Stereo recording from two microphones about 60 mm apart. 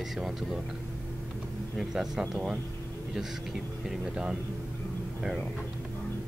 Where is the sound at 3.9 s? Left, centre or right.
Centre.